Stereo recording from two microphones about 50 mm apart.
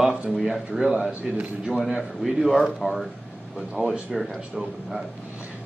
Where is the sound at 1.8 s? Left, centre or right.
Centre.